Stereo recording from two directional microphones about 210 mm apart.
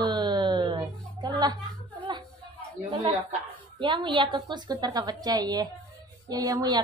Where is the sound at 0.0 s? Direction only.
20° right (ahead or behind).